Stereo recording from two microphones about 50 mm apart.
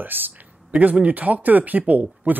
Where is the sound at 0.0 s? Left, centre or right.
Right.